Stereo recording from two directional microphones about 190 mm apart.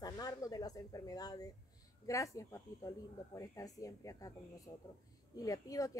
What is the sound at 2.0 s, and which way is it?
A woman's voice, 15° left (ahead or behind).